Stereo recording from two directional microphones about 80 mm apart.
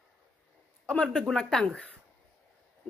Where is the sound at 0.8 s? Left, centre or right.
Centre.